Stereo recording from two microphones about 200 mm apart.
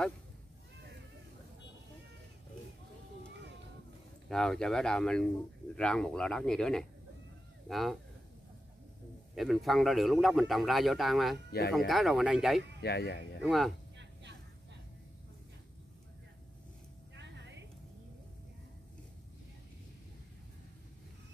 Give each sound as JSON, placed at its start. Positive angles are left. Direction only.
{"t": 4.3, "sound": "a man's voice", "side_deg": 5}
{"t": 9.3, "sound": "a man's voice", "side_deg": 0}
{"t": 12.8, "sound": "speech", "side_deg": 55}
{"t": 13.4, "sound": "a man's voice", "side_deg": 0}
{"t": 13.9, "sound": "vehicle", "side_deg": -60}
{"t": 17.1, "sound": "music", "side_deg": -60}